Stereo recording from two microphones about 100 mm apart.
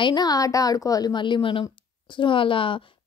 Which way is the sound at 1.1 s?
55° left (ahead or behind).